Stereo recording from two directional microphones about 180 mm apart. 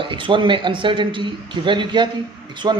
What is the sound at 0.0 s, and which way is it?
Speech, 30° right (ahead or behind).